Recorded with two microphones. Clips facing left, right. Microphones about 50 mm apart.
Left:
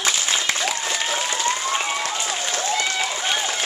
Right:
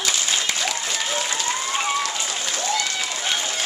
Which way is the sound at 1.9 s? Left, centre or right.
Left.